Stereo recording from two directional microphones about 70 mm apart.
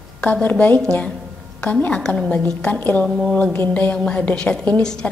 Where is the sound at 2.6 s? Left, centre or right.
Left.